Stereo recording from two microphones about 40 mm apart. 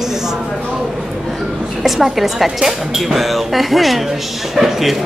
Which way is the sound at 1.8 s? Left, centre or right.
Centre.